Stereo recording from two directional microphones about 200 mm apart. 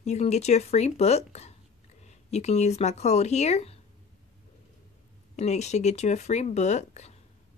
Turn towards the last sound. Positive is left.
turn(degrees=35)  # may be behind; listen again after turning